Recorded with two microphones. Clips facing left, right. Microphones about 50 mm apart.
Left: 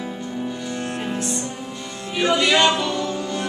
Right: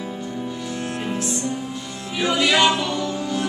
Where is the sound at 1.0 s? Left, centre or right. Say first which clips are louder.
Right 1 dB; centre.